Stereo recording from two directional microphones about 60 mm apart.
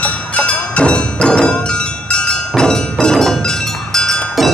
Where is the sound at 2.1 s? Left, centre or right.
Centre.